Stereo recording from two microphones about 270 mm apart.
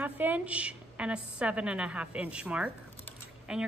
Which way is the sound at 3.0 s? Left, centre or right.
Centre.